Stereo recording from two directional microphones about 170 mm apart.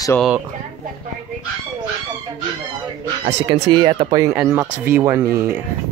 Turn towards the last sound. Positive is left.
turn(degrees=-15)  # may be behind; listen again after turning